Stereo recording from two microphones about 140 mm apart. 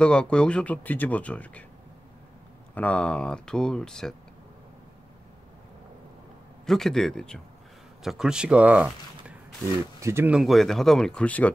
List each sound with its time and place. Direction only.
0.0 s speech: 5° left (ahead or behind)
2.7 s speech: 10° left (ahead or behind)
6.6 s speech: 5° left (ahead or behind); by 10.3 s 20° right (ahead or behind)
10.3 s speech: centre (ahead or behind)